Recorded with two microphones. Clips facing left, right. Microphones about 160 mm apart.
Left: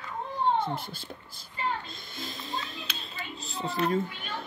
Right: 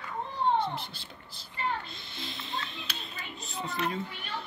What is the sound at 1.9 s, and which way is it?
Music, 45° left (ahead or behind).